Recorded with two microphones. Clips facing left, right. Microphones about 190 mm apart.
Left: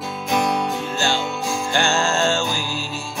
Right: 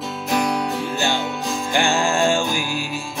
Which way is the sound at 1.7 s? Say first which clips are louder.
Right 2 dB; 15° right (ahead or behind).